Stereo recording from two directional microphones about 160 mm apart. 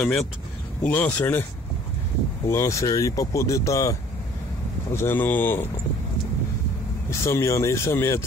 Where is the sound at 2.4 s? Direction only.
20° left (ahead or behind).